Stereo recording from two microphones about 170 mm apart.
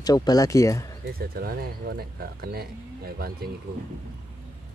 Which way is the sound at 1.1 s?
65° right (ahead or behind).